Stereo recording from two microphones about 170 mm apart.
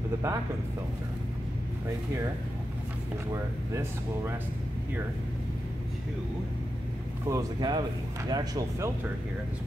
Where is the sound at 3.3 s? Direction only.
15° right (ahead or behind).